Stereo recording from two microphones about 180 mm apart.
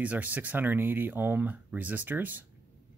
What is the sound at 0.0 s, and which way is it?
Speech, 10° right (ahead or behind).